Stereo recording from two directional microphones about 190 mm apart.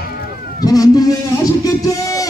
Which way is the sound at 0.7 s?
20° left (ahead or behind).